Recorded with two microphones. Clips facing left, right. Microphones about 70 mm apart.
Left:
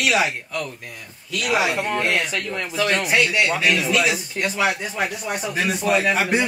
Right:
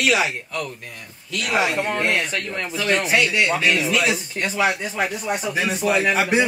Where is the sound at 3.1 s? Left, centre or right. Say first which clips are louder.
Even; centre.